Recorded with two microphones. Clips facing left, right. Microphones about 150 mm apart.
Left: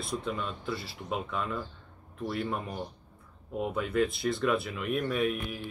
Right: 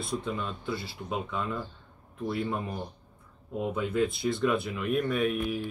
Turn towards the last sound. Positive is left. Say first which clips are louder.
# right 2 dB
turn(degrees=0)  # may be behind; listen again after turning